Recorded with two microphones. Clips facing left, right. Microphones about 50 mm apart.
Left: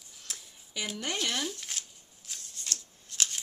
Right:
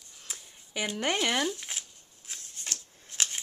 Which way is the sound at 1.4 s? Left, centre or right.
Centre.